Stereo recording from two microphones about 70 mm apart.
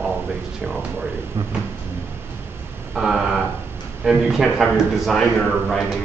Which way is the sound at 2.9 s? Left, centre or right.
Centre.